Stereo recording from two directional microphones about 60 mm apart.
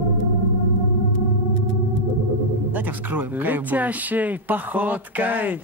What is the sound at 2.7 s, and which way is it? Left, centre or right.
Speech, right.